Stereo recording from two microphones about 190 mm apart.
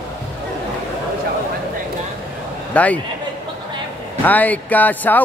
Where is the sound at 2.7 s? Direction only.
5° left (ahead or behind).